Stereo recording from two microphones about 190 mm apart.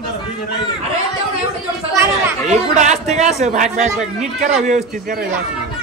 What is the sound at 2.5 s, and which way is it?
A man's voice, 40° right (ahead or behind).